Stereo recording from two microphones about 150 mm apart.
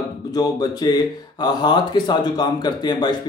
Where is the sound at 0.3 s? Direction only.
25° left (ahead or behind).